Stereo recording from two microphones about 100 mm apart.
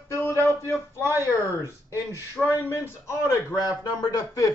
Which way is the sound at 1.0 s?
25° right (ahead or behind).